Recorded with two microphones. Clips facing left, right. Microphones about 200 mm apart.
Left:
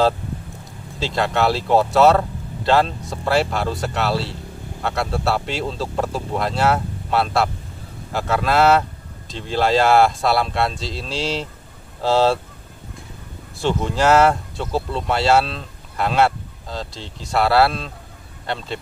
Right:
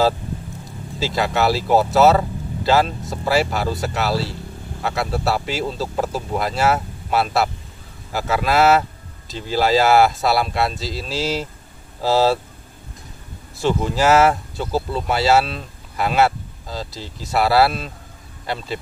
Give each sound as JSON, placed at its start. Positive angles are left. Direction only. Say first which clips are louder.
{"t": 0.7, "sound": "speech", "louder": "right 1 dB", "side_deg": 0}
{"t": 13.6, "sound": "speech", "louder": "right 1 dB", "side_deg": -5}